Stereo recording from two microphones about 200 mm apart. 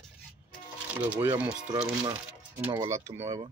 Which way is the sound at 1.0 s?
10° right (ahead or behind).